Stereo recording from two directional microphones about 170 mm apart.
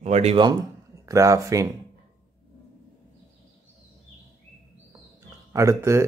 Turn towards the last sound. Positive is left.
turn(degrees=-15)  # may be behind; listen again after turning